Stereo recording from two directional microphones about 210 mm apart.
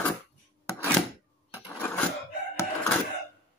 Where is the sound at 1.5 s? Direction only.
10° left (ahead or behind).